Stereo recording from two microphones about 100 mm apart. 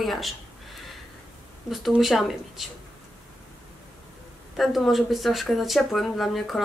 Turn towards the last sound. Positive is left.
turn(degrees=0)  # may be behind; listen again after turning